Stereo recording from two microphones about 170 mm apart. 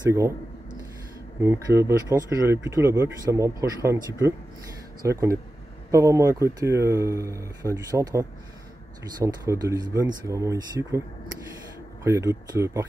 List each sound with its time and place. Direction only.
1.4 s speech: 15° right (ahead or behind)
12.0 s speech: 15° right (ahead or behind)